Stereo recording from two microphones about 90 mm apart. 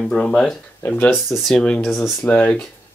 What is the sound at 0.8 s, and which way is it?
Speech, 20° left (ahead or behind).